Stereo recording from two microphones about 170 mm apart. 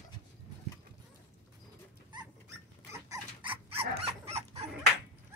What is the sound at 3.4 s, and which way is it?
Dog, 30° right (ahead or behind).